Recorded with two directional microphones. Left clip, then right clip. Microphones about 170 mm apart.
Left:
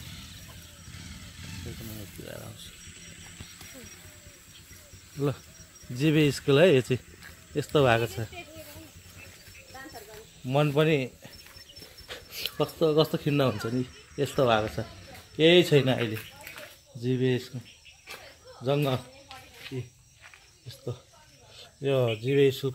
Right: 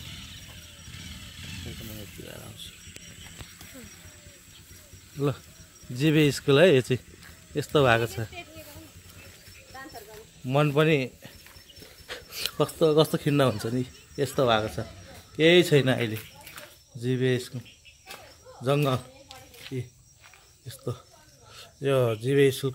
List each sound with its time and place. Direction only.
0.8 s vehicle: 25° right (ahead or behind)
2.2 s speech: 65° left (ahead or behind)
5.1 s speech: 5° right (ahead or behind)
10.4 s speech: 5° right (ahead or behind)
11.8 s speech: 15° right (ahead or behind); by 17.6 s centre (ahead or behind)
18.6 s speech: 5° right (ahead or behind)
20.6 s a sound: 15° right (ahead or behind)
21.5 s speech: 5° right (ahead or behind)